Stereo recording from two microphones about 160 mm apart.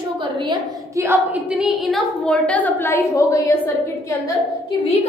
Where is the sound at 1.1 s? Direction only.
5° right (ahead or behind); by 3.6 s 20° left (ahead or behind).